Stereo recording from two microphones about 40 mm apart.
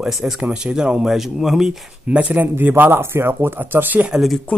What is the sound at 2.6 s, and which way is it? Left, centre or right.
Speech, right.